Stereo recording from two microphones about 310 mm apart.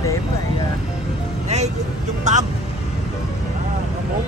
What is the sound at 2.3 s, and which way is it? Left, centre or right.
Speech, right.